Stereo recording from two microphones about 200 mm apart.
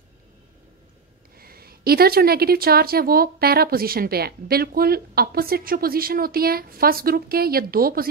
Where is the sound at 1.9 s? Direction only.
50° right (ahead or behind).